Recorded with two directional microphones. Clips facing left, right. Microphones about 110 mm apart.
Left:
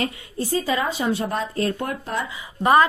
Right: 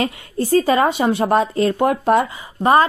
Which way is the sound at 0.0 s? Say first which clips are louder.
Right 5 dB; 60° right (ahead or behind).